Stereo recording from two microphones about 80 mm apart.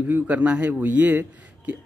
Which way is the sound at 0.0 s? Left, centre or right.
Centre.